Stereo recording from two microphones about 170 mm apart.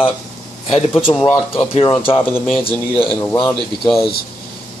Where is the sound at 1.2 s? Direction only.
30° left (ahead or behind).